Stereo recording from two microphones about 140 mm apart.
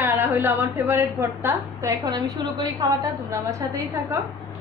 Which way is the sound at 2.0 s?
30° right (ahead or behind).